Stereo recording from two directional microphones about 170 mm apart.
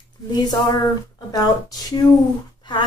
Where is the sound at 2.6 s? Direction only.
25° left (ahead or behind).